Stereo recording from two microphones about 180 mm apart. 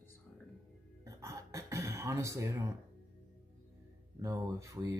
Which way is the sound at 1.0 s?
15° right (ahead or behind).